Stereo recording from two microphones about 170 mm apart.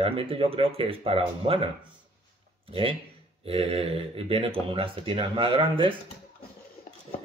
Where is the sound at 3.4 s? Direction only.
35° right (ahead or behind).